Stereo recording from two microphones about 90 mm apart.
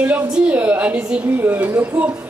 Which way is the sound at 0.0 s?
20° right (ahead or behind).